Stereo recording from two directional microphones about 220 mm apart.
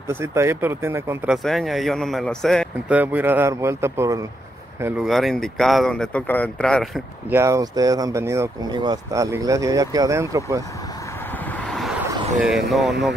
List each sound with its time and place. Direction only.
0.1 s speech: 10° right (ahead or behind)
7.2 s speech: 10° right (ahead or behind)
11.6 s vehicle: centre (ahead or behind)
12.4 s speech: centre (ahead or behind)